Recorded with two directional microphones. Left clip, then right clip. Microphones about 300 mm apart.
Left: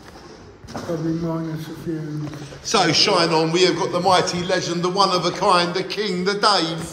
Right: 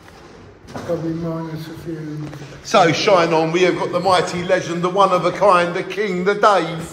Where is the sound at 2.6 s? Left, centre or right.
Centre.